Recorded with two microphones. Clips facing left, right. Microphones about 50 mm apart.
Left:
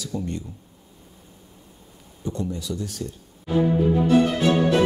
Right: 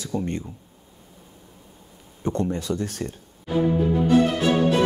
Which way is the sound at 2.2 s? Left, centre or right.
Right.